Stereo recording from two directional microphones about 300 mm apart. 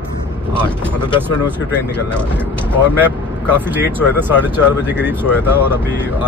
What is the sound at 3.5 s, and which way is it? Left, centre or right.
Speech, centre.